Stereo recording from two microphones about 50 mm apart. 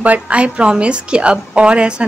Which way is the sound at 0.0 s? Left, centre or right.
Right.